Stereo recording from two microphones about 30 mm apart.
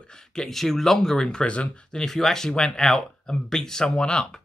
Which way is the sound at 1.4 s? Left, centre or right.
Left.